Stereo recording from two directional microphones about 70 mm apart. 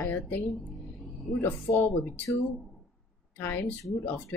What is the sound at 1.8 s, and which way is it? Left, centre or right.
Speech, left.